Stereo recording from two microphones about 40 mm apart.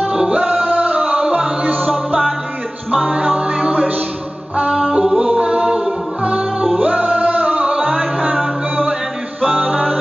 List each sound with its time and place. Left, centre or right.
0.3 s music: right
1.6 s music: right
2.9 s music: right
5.0 s a capella: centre
6.8 s music: right
9.4 s music: right